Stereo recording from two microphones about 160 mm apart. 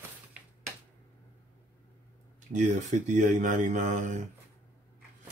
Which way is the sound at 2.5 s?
50° right (ahead or behind).